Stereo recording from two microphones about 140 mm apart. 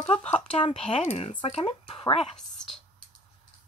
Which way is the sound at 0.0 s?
45° left (ahead or behind).